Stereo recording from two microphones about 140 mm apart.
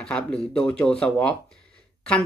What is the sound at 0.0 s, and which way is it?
Speech, 5° left (ahead or behind).